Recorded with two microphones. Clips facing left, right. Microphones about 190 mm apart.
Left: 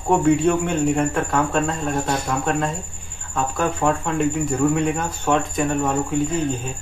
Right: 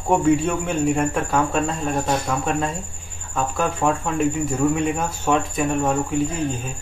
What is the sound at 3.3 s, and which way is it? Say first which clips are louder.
Speech: left 1 dB; centre (ahead or behind).